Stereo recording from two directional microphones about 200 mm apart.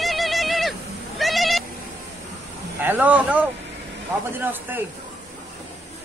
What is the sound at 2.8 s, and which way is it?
Speech, 10° right (ahead or behind).